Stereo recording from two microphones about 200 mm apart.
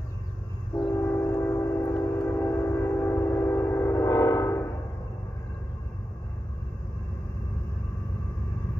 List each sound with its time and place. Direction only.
0.8 s train: 10° left (ahead or behind)